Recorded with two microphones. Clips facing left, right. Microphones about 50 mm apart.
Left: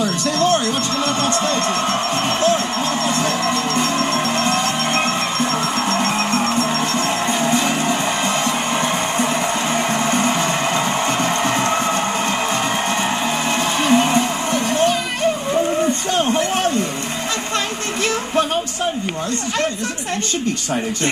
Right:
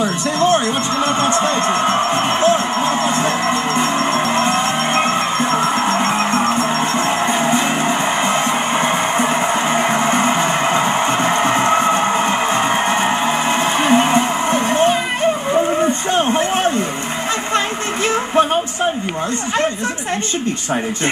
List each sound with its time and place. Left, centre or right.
0.0 s music: right
16.1 s a sound: right
18.3 s music: right